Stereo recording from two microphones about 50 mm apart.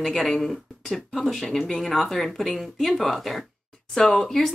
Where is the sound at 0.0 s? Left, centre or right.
Centre.